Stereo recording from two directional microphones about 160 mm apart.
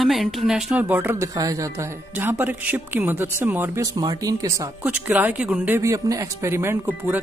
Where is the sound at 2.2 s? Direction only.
10° right (ahead or behind).